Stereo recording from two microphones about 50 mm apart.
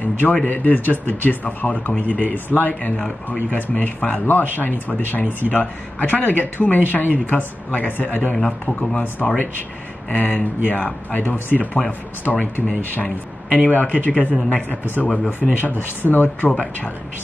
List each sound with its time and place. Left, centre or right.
0.0 s a sound: left
0.5 s speech: left
8.5 s speech: left
8.9 s speech: left
12.3 s speech: centre
12.6 s speech: left
15.4 s speech: centre
16.0 s speech: left